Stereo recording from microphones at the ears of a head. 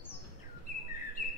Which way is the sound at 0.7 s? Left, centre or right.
Left.